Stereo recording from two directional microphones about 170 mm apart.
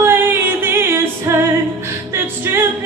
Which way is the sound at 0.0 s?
15° right (ahead or behind).